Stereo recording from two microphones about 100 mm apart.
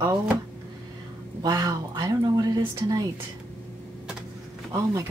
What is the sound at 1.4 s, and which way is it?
A woman's voice, 40° right (ahead or behind).